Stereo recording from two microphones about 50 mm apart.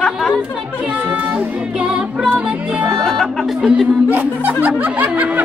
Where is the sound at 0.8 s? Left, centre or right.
Right.